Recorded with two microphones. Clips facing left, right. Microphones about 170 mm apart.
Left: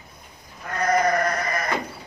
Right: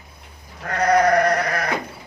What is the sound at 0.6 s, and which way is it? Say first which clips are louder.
Goat: right 4 dB; 75° right (ahead or behind).